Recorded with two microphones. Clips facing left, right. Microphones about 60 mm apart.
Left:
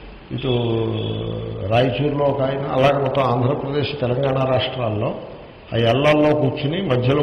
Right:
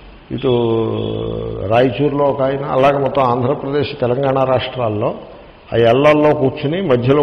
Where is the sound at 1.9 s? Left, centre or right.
Centre.